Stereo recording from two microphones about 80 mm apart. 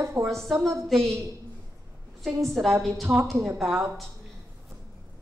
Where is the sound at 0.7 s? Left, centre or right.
Centre.